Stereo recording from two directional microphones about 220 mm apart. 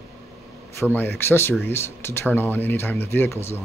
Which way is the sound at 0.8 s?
10° left (ahead or behind).